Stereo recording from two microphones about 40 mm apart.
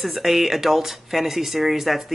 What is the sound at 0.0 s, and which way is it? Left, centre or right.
Speech, centre.